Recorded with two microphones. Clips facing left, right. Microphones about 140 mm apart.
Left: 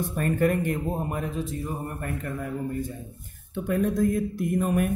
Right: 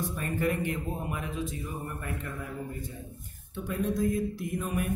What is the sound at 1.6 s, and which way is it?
A man's voice, 55° left (ahead or behind).